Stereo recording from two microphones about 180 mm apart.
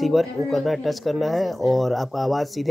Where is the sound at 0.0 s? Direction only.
Centre (ahead or behind).